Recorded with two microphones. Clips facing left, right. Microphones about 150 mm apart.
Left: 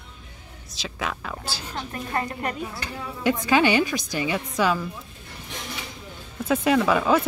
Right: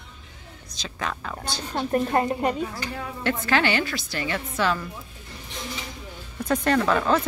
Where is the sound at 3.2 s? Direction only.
15° left (ahead or behind).